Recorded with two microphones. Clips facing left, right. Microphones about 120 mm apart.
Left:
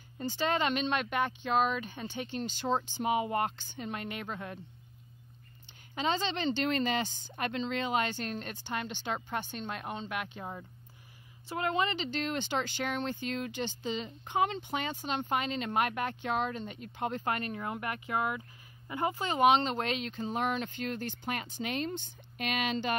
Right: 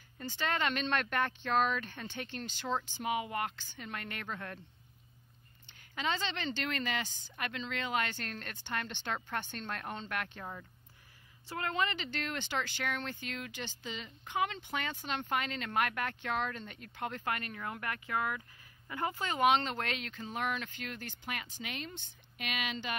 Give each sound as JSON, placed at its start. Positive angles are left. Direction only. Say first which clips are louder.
{"t": 0.2, "sound": "speech", "louder": "left 4 dB", "side_deg": 20}
{"t": 5.9, "sound": "speech", "louder": "left 4 dB", "side_deg": 25}